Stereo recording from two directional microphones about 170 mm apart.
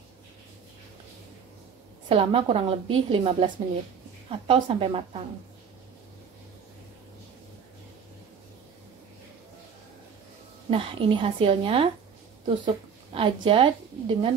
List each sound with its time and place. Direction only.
2.0 s a woman's voice: 35° right (ahead or behind)
10.7 s a woman's voice: 30° right (ahead or behind)